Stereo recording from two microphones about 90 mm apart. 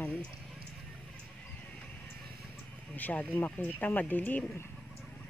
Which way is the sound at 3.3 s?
20° left (ahead or behind).